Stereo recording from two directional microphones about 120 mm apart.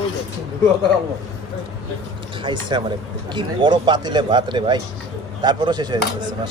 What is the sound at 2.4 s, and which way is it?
Speech, 40° right (ahead or behind).